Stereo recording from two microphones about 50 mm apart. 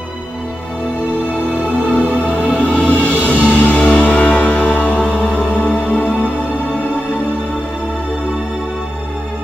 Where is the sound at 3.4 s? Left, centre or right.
Right.